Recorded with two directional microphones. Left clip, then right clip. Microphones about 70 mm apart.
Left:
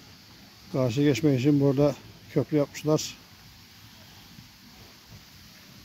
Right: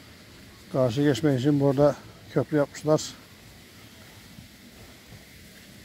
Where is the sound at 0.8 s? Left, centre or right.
Left.